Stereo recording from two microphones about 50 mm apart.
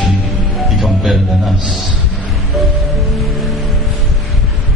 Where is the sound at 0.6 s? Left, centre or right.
Centre.